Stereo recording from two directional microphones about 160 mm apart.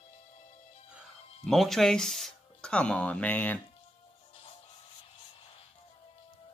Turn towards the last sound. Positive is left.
turn(degrees=35)  # may be behind; listen again after turning